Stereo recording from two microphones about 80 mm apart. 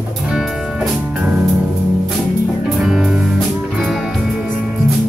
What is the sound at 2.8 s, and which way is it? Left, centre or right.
Music, centre.